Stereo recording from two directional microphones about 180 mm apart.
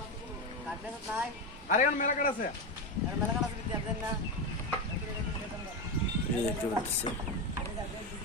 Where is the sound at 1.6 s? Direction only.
45° left (ahead or behind).